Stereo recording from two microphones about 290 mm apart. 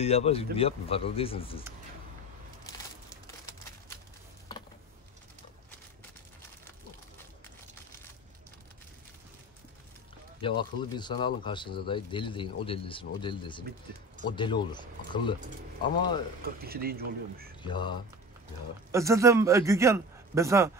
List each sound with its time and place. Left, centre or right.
0.0 s speech: left
10.4 s speech: centre
16.4 s speech: right
17.6 s speech: centre
18.9 s a man's voice: centre